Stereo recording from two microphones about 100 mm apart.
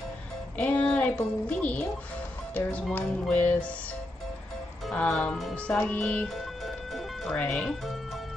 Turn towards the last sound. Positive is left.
turn(degrees=5)  # may be behind; listen again after turning